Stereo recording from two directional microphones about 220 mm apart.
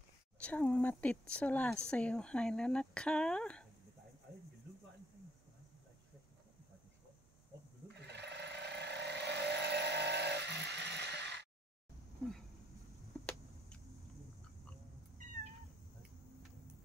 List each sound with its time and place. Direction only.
0.4 s speech: 5° left (ahead or behind)
8.1 s vehicle: 50° right (ahead or behind)
13.2 s a sound: 5° left (ahead or behind)